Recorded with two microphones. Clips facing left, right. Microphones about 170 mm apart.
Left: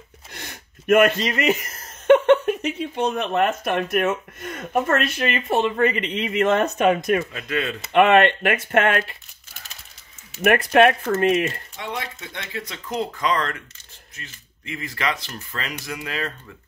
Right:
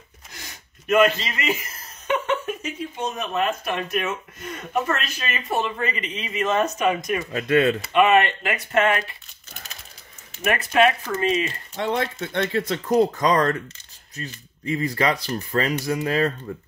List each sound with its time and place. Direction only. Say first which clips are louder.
0.3 s speech: left 4 dB; 60° left (ahead or behind)
7.3 s speech: right 8 dB; 45° right (ahead or behind)
7.9 s speech: left 5 dB; 65° left (ahead or behind)
10.4 s speech: left 4 dB; 60° left (ahead or behind)
11.7 s speech: right 7 dB; 55° right (ahead or behind); by 13.6 s 40° right (ahead or behind)
14.8 s speech: right 4 dB; 40° right (ahead or behind)